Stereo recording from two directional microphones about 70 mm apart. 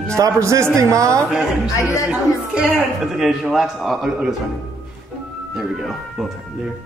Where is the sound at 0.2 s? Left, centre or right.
Right.